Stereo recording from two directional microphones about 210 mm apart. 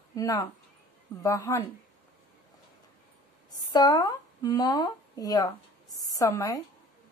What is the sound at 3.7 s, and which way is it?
A woman's voice, 20° left (ahead or behind).